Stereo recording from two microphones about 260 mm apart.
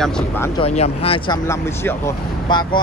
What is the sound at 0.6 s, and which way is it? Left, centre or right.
Speech, left.